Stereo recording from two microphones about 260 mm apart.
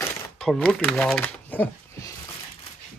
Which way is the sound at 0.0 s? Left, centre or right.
Centre.